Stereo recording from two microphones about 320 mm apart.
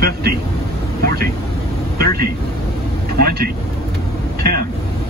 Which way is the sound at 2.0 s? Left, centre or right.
Right.